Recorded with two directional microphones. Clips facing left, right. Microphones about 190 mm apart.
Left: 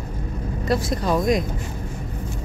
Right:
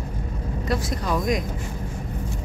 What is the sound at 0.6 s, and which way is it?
Speech, 30° left (ahead or behind).